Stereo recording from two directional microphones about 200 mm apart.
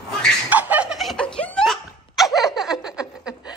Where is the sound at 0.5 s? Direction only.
10° right (ahead or behind).